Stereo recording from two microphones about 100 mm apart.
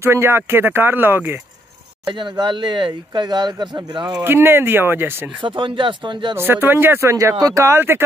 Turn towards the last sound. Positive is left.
turn(degrees=-25)  # may be behind; listen again after turning